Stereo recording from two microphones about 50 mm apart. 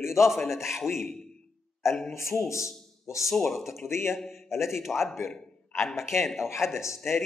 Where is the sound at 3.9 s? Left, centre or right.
Left.